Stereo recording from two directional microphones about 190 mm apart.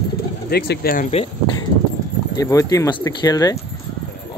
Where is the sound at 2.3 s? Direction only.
15° left (ahead or behind).